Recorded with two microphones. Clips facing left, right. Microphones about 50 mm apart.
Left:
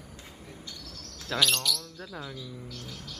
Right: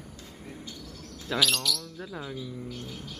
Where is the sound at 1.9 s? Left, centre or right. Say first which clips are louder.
Right 3 dB; centre.